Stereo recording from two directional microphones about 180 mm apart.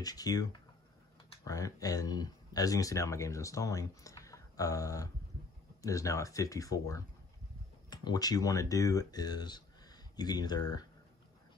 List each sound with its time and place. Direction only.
0.0 s speech: 20° left (ahead or behind)